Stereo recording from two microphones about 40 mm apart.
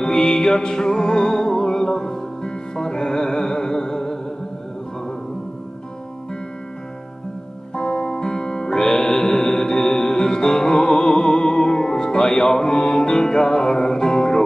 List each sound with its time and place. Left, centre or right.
0.0 s music: centre
7.7 s music: centre